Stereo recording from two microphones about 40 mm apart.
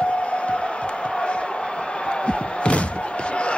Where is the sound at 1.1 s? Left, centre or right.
Left.